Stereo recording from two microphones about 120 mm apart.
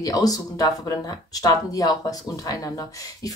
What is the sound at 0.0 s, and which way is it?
Speech, 30° left (ahead or behind).